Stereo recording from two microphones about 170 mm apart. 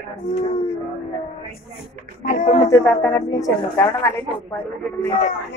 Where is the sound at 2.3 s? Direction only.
45° left (ahead or behind).